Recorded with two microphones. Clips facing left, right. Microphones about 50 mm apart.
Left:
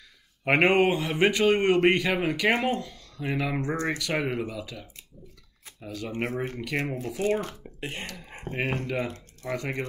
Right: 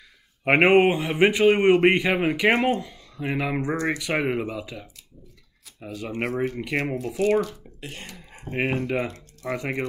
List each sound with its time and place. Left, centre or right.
0.5 s a man's voice: centre
7.0 s speech: right
7.3 s speech: left
8.5 s a man's voice: right
9.0 s speech: right
9.6 s a man's voice: right